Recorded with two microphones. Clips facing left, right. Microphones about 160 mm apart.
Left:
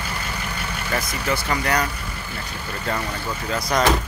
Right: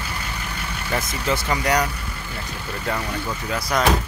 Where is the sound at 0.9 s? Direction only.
15° right (ahead or behind).